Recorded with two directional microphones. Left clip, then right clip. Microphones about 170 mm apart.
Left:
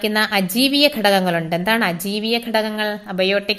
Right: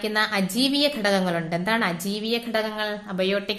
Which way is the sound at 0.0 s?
30° left (ahead or behind).